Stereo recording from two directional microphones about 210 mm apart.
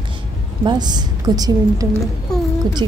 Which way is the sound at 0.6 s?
20° right (ahead or behind).